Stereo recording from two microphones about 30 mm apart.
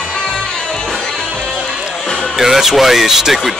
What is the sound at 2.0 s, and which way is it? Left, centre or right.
Music, centre.